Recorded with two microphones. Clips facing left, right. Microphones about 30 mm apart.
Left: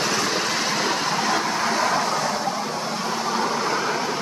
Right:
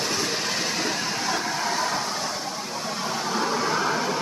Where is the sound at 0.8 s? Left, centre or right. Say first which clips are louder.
Left 4 dB; left.